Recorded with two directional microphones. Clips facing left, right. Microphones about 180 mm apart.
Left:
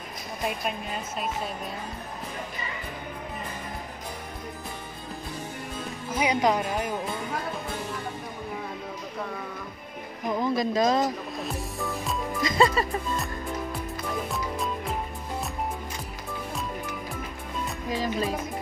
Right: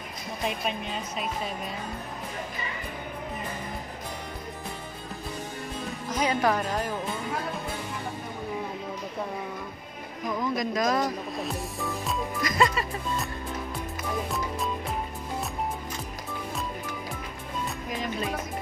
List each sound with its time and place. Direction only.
0.5 s speech: 5° left (ahead or behind)
6.0 s speech: 10° left (ahead or behind)
10.2 s speech: 25° left (ahead or behind)
11.3 s music: centre (ahead or behind)
12.4 s music: 25° left (ahead or behind)
17.8 s speech: 30° left (ahead or behind)